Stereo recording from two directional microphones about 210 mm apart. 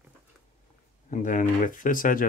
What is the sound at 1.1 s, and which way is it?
Speech, 40° left (ahead or behind).